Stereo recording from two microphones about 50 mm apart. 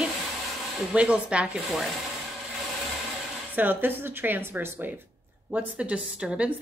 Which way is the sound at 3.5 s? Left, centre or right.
Right.